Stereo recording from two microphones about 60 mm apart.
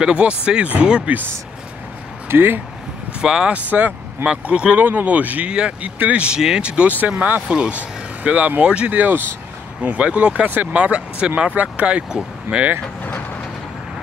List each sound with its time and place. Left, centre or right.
0.0 s speech: centre
2.2 s speech: right
3.2 s speech: centre
3.5 s speech: right